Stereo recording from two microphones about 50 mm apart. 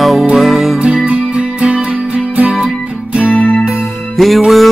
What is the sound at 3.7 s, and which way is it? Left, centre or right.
Music, centre.